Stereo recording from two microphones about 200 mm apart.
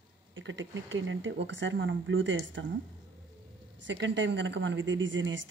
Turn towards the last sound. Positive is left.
turn(degrees=-70)  # may be behind; listen again after turning